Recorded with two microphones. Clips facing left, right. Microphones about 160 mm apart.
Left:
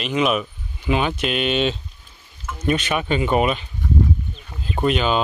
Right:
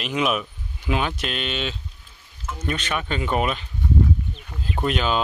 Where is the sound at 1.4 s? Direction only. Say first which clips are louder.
Left 8 dB; 20° left (ahead or behind); by 3.6 s 5° left (ahead or behind).